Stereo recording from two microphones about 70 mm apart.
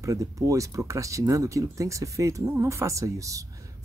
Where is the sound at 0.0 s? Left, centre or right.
Right.